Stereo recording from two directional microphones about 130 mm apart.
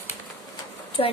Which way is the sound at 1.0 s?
45° left (ahead or behind).